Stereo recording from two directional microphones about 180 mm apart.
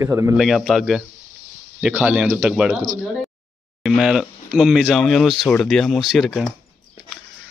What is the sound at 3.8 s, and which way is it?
Speech, centre (ahead or behind).